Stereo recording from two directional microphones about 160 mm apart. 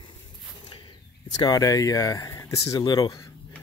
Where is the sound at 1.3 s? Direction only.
25° left (ahead or behind).